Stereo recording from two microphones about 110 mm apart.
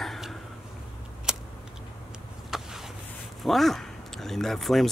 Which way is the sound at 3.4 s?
Centre (ahead or behind).